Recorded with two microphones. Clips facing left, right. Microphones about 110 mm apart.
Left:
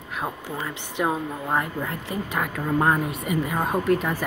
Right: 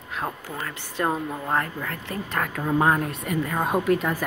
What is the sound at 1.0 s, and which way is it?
A woman's voice, 5° left (ahead or behind).